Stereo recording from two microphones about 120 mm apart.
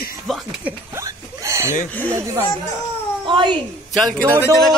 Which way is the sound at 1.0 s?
25° right (ahead or behind).